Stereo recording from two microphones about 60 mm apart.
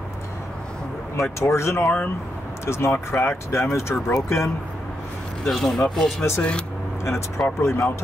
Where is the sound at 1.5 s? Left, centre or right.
Left.